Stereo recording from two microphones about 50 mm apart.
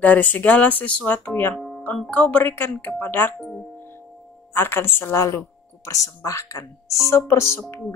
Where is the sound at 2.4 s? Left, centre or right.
Left.